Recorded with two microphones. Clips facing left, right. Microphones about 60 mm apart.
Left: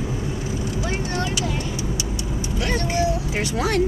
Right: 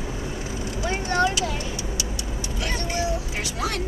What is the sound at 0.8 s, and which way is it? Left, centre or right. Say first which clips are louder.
Vehicle: right 2 dB; right.